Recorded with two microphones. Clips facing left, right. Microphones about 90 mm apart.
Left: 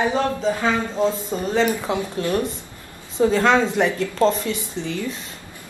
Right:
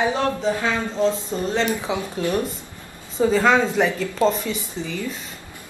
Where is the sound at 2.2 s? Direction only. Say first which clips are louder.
Even; 15° right (ahead or behind).